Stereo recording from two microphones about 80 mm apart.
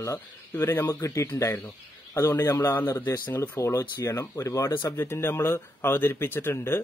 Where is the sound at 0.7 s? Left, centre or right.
Left.